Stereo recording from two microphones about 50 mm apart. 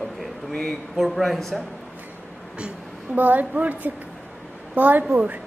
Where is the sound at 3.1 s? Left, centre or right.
Right.